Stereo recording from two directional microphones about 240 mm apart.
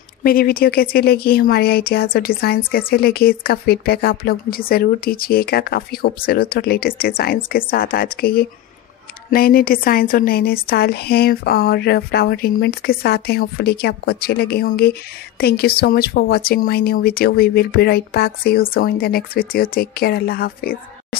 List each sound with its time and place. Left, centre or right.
0.2 s a woman's voice: left